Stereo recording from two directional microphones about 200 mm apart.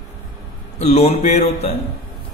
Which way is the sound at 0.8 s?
35° left (ahead or behind).